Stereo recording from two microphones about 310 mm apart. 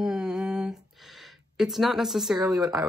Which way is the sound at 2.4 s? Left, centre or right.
Centre.